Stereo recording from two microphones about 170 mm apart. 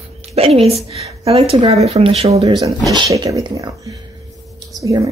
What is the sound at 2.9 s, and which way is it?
Speech, 25° right (ahead or behind).